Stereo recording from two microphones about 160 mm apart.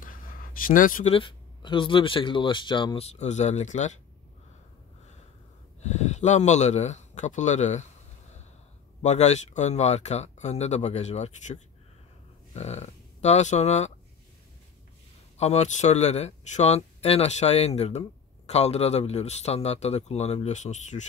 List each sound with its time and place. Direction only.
0.0 s a sound: 60° left (ahead or behind)
1.1 s speech: 30° left (ahead or behind); by 3.9 s 45° left (ahead or behind)
5.8 s speech: 45° left (ahead or behind)
9.0 s speech: 45° left (ahead or behind)
15.3 s speech: 40° left (ahead or behind)